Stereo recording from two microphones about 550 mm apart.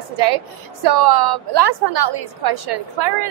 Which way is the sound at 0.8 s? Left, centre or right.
Right.